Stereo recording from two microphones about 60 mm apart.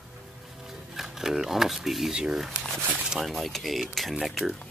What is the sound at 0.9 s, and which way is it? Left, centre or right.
Speech, centre.